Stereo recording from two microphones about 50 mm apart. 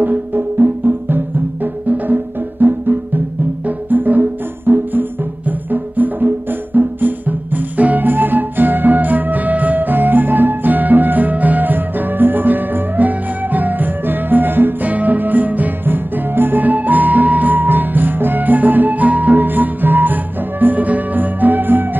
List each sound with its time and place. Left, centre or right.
0.0 s music: right